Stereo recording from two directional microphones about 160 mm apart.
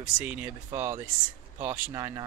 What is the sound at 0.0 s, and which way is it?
Speech, 10° right (ahead or behind).